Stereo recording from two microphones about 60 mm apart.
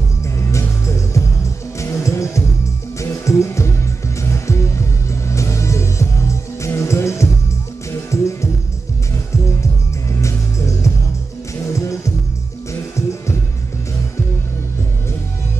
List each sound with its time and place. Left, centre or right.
0.4 s music: left
10.2 s music: left